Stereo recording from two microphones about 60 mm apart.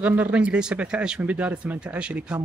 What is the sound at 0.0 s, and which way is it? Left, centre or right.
Speech, right.